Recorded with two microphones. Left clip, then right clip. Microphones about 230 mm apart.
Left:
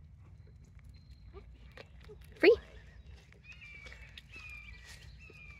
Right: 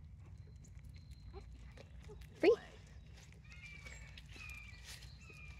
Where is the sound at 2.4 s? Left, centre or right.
Left.